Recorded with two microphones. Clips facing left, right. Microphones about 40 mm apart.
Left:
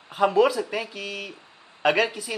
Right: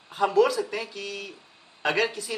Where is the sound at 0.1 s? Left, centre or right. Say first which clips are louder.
Left 2 dB; centre.